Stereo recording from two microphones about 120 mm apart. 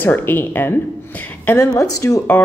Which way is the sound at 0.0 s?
15° left (ahead or behind).